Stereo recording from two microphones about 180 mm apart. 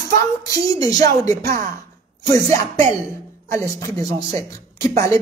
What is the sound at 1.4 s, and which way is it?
Speech, 55° right (ahead or behind).